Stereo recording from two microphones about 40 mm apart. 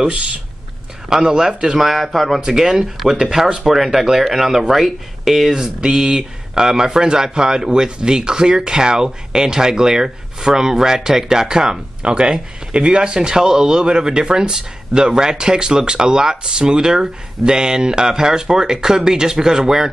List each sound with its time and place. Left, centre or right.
0.0 s speech: right
1.8 s speech: centre
2.4 s speech: centre
5.5 s speech: centre